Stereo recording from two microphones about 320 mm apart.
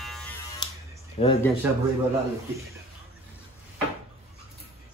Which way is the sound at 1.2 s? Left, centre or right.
Left.